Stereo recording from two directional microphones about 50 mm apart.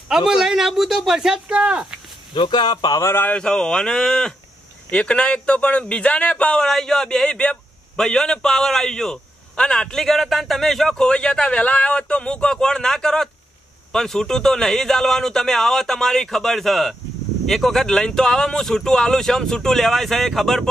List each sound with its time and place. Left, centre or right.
0.1 s speech: centre
3.3 s a man's voice: centre
4.9 s speech: left
6.6 s a man's voice: centre
7.2 s a man's voice: left; by 11.1 s centre
11.1 s a man's voice: centre
17.8 s a man's voice: centre